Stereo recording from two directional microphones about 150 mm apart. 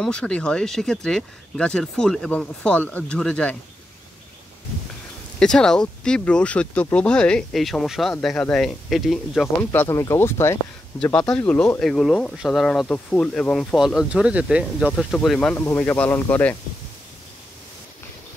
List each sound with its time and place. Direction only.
0.0 s speech: 5° left (ahead or behind)
5.4 s speech: 5° left (ahead or behind)
9.6 s speech: 15° left (ahead or behind)
11.1 s speech: 5° left (ahead or behind)